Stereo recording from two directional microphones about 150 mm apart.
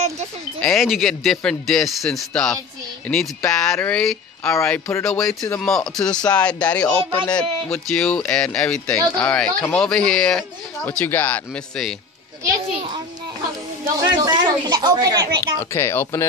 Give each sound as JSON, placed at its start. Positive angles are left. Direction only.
{"t": 0.6, "sound": "speech", "side_deg": 0}
{"t": 14.0, "sound": "speech", "side_deg": -25}
{"t": 15.7, "sound": "speech", "side_deg": 15}